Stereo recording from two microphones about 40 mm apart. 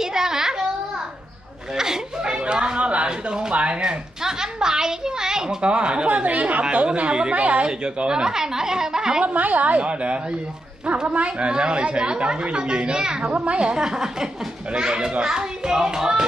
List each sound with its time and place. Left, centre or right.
0.0 s a sound: centre
1.8 s chatter: centre
3.1 s a woman's voice: right
4.2 s a sound: centre
5.7 s a woman's voice: right
9.2 s a woman's voice: right; by 16.3 s centre